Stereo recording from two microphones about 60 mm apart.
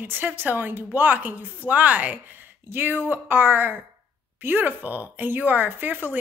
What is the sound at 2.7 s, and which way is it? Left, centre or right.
A woman's voice, right.